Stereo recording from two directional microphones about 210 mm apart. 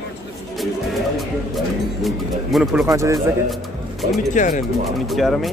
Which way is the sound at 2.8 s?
15° right (ahead or behind).